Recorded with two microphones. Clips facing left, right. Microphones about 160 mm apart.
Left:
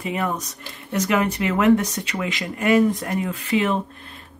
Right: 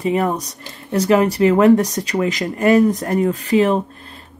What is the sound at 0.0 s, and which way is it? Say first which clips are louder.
Speech: right 7 dB; 35° right (ahead or behind).